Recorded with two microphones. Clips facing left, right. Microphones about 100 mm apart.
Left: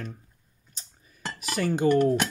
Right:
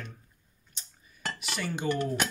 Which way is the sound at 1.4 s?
40° left (ahead or behind).